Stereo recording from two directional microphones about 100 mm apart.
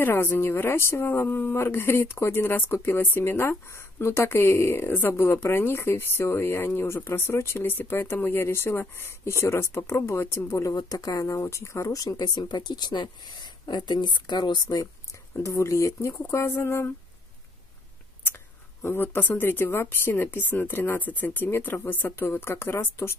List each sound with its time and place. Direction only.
0.0 s speech: 20° left (ahead or behind); by 14.9 s 45° left (ahead or behind)
15.3 s speech: 30° left (ahead or behind)
18.8 s speech: 20° left (ahead or behind)